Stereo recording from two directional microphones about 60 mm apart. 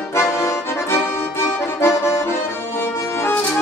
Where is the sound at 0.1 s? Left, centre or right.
Left.